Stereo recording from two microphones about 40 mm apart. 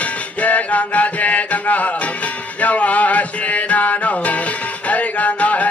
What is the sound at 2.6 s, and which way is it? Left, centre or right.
Music, left.